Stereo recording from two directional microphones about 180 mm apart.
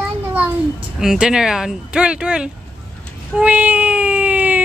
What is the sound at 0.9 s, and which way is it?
A woman's voice, 5° right (ahead or behind).